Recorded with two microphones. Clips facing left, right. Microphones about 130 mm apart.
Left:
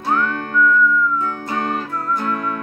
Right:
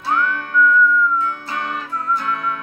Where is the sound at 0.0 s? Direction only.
45° left (ahead or behind).